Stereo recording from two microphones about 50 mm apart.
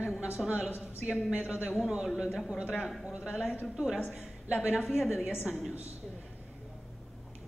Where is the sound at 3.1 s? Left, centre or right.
Centre.